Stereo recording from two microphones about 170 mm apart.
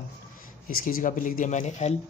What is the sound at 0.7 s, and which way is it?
Speech, 55° left (ahead or behind).